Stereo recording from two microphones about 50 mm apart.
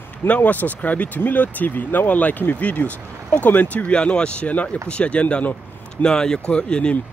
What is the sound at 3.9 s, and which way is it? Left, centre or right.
Speech, centre.